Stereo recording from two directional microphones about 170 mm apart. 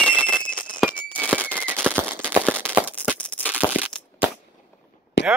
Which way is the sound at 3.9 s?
5° left (ahead or behind).